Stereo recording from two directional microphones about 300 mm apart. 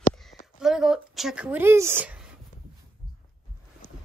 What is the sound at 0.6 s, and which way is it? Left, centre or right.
Speech, centre.